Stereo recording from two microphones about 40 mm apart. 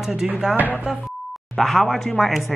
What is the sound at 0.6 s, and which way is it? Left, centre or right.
Speech, right.